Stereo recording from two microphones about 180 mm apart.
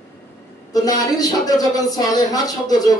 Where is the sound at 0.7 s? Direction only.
20° left (ahead or behind).